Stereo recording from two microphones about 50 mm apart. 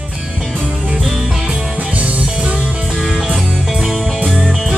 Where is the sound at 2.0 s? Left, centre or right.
Right.